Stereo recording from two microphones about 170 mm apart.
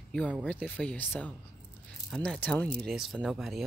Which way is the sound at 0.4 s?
10° left (ahead or behind).